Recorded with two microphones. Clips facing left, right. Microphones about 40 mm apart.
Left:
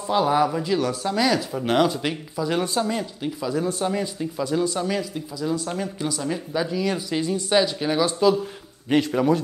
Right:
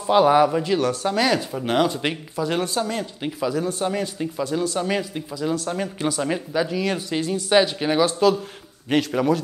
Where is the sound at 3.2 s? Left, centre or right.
Right.